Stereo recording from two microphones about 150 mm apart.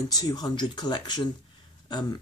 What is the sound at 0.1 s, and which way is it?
Speech, 25° left (ahead or behind).